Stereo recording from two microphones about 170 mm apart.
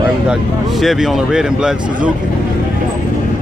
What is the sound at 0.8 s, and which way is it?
Speech, centre (ahead or behind).